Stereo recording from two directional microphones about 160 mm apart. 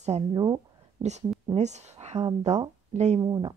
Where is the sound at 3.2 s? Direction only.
25° right (ahead or behind).